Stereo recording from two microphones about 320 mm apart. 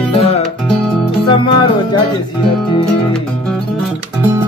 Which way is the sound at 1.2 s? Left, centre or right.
Centre.